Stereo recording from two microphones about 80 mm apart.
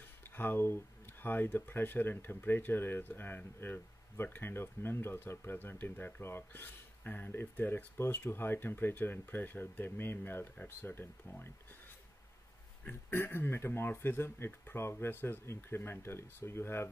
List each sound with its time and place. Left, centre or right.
0.4 s speech: left
13.1 s speech: left